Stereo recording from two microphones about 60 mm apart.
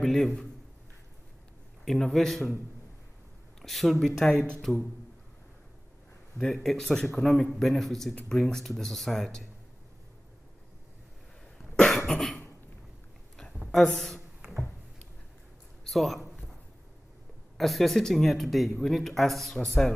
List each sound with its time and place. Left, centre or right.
0.0 s a man's voice: centre
1.9 s speech: centre
3.6 s speech: centre
4.7 s speech: centre
6.3 s speech: centre
11.7 s cough: centre
13.7 s a woman's voice: centre
15.8 s a sound: centre
17.6 s speech: centre